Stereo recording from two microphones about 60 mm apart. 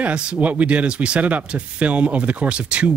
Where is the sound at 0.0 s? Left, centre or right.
Centre.